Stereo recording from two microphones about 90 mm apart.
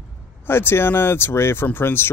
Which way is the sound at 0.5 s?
25° left (ahead or behind).